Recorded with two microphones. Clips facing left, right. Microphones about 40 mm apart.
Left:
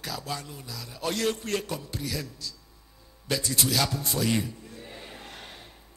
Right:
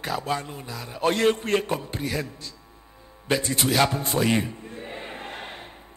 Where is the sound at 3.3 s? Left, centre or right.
Right.